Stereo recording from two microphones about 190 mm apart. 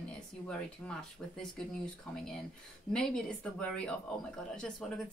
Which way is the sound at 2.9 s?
5° left (ahead or behind).